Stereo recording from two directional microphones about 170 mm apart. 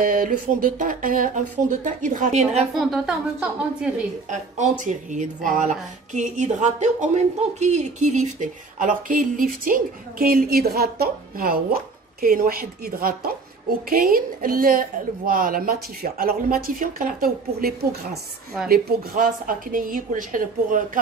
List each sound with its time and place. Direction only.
0.0 s speech: 55° right (ahead or behind)
2.7 s speech: centre (ahead or behind)
4.3 s speech: 45° right (ahead or behind); by 18.1 s 65° right (ahead or behind)
18.1 s speech: centre (ahead or behind)
18.7 s speech: 60° right (ahead or behind)